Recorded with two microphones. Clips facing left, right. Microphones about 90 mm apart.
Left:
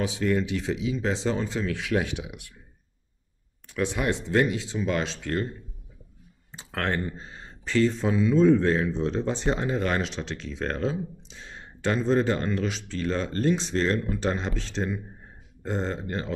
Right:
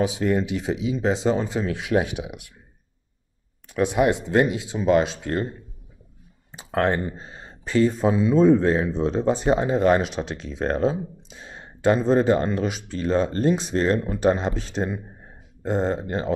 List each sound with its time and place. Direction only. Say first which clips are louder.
0.0 s speech: right 3 dB; 15° right (ahead or behind)
3.7 s speech: right 7 dB; 15° right (ahead or behind)